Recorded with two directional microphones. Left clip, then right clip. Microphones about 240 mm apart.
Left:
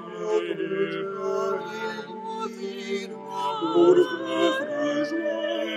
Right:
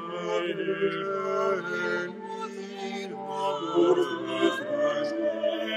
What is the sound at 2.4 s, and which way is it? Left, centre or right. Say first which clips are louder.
Music: left 3 dB; left.